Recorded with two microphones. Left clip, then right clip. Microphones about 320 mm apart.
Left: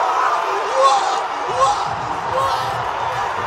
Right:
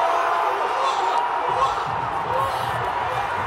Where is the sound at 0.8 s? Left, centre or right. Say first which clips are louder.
Left 6 dB; centre.